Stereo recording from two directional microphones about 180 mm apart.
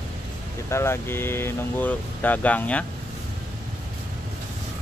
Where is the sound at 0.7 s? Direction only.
15° left (ahead or behind).